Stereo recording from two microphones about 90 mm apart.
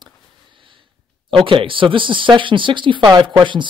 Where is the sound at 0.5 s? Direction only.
70° right (ahead or behind).